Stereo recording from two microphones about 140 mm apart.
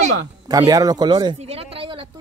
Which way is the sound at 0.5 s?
25° right (ahead or behind).